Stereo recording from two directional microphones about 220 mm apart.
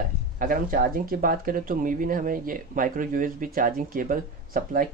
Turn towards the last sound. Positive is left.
turn(degrees=-40)  # may be behind; listen again after turning